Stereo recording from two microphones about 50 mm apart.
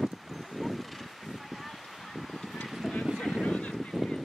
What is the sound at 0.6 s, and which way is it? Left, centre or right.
Vehicle, centre.